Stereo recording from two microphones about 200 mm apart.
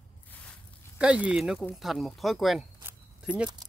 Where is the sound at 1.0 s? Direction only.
5° right (ahead or behind).